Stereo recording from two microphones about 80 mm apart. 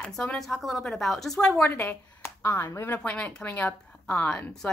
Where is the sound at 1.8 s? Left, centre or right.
Left.